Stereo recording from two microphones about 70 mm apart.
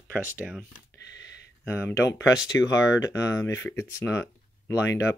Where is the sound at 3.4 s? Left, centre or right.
Left.